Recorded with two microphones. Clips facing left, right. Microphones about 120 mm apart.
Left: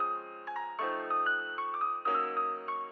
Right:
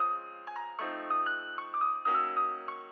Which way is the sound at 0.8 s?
15° left (ahead or behind).